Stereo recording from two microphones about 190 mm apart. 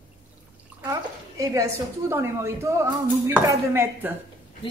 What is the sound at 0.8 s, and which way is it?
A woman's voice, 15° right (ahead or behind).